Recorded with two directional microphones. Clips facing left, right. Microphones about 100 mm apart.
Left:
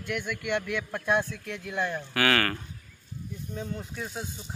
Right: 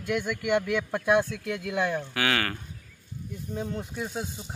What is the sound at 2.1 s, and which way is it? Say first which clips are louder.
Speech: left 2 dB; 10° right (ahead or behind).